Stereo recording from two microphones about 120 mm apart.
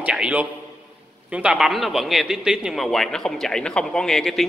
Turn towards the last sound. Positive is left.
turn(degrees=5)  # may be behind; listen again after turning